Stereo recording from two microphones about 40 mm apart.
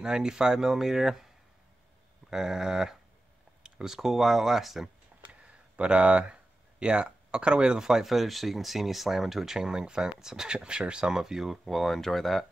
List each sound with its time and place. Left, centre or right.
0.0 s speech: centre
5.2 s a sound: right; by 8.1 s centre
8.1 s speech: centre